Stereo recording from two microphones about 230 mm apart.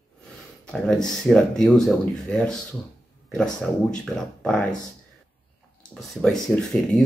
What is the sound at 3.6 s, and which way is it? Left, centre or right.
Speech, centre.